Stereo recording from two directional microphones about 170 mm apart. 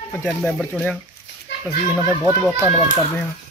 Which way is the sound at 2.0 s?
20° right (ahead or behind).